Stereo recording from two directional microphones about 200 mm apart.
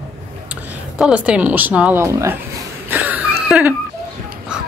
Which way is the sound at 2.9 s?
10° right (ahead or behind).